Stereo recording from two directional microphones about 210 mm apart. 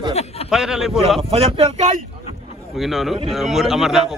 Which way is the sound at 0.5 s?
Centre (ahead or behind).